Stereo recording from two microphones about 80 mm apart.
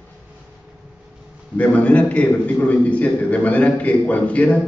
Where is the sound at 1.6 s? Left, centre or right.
Centre.